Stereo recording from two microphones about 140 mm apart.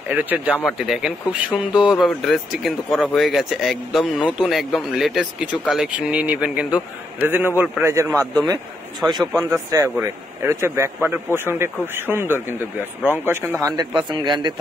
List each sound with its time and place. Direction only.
0.1 s a man's voice: 10° right (ahead or behind)
7.8 s speech: 20° right (ahead or behind)
9.4 s a man's voice: 20° right (ahead or behind)